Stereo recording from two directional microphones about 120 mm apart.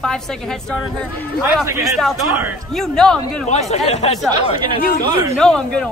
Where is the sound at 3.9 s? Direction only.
65° left (ahead or behind).